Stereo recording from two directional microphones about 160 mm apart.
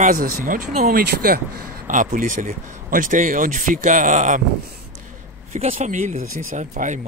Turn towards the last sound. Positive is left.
turn(degrees=-50)  # may be behind; listen again after turning